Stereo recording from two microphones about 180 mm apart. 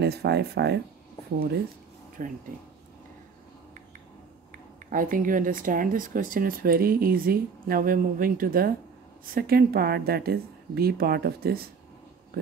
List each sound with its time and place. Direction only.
0.0 s a woman's voice: 65° right (ahead or behind)
2.2 s speech: 45° right (ahead or behind)
4.8 s a woman's voice: 50° right (ahead or behind)